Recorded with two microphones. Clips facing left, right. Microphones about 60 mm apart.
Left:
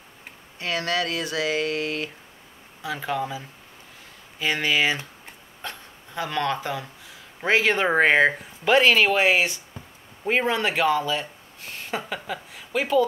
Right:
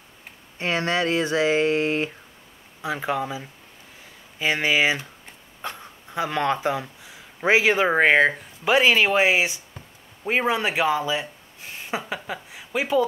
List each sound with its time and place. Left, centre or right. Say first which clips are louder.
0.6 s speech: right 2 dB; right
7.4 s speech: right 2 dB; centre
8.6 s speech: left 1 dB; centre